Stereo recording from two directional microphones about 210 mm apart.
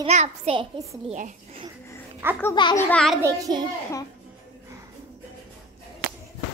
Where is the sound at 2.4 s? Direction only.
20° left (ahead or behind).